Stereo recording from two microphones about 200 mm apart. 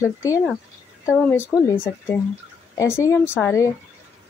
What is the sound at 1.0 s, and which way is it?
Speech, centre (ahead or behind).